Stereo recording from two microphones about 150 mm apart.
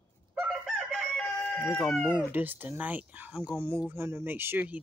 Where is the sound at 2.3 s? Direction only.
10° right (ahead or behind).